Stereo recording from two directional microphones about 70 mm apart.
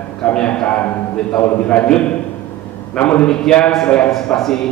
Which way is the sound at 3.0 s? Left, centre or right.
Centre.